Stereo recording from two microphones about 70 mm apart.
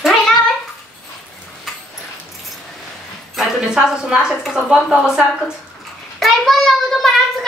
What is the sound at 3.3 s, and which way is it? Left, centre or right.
A woman's voice, centre.